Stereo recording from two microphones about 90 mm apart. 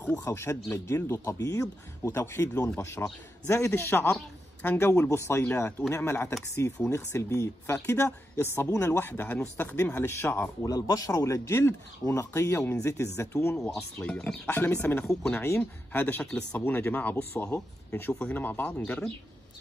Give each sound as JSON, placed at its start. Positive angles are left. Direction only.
{"t": 0.1, "sound": "speech", "side_deg": 35}
{"t": 5.4, "sound": "speech", "side_deg": 20}
{"t": 10.6, "sound": "speech", "side_deg": 45}
{"t": 13.6, "sound": "speech", "side_deg": 5}
{"t": 14.4, "sound": "speech", "side_deg": 20}